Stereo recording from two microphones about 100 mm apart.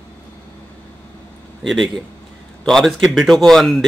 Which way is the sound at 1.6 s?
Centre (ahead or behind).